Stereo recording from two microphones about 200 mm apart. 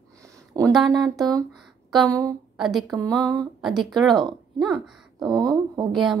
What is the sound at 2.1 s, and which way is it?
Speech, 15° right (ahead or behind).